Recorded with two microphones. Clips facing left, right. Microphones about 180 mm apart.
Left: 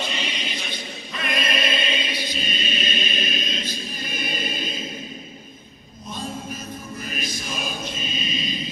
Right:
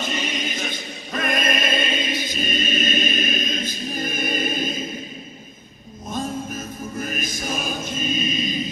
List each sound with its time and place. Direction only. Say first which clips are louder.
0.0 s choir: right 3 dB; 45° right (ahead or behind)
6.0 s choir: right 4 dB; 45° right (ahead or behind)